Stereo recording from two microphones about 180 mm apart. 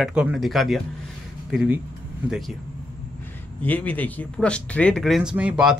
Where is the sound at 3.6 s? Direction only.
10° left (ahead or behind).